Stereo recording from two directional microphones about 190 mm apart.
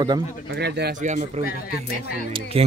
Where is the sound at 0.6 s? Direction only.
60° right (ahead or behind).